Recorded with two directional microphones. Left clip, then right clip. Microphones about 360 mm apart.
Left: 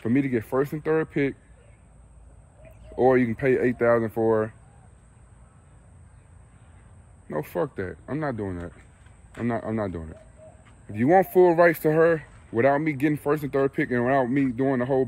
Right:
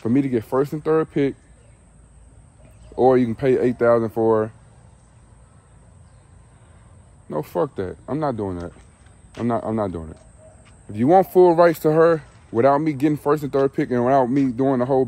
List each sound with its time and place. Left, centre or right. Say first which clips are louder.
0.0 s speech: right 4 dB; centre
3.0 s speech: right 4 dB; centre
7.2 s speech: right 5 dB; centre